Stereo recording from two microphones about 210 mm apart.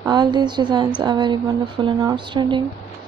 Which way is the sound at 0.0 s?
20° right (ahead or behind).